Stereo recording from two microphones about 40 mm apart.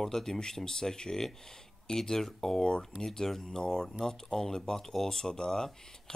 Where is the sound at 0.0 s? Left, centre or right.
Centre.